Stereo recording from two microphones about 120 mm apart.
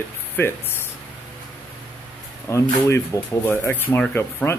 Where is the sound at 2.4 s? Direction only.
25° left (ahead or behind).